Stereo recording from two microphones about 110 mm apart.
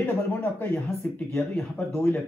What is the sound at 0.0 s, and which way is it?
Speech, 20° left (ahead or behind).